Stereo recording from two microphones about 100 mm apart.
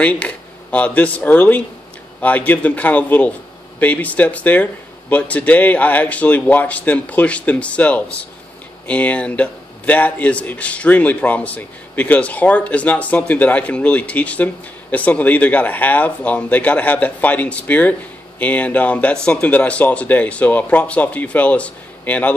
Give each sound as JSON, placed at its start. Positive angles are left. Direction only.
{"t": 0.0, "sound": "a man's voice", "side_deg": 15}